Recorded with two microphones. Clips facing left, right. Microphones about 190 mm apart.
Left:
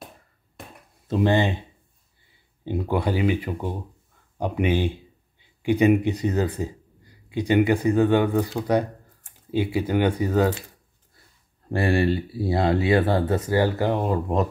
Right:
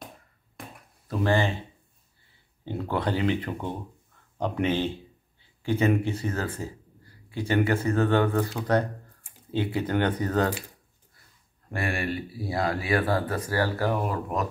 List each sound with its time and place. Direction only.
1.0 s speech: 20° left (ahead or behind)
2.6 s speech: 15° left (ahead or behind)
11.7 s speech: 30° left (ahead or behind)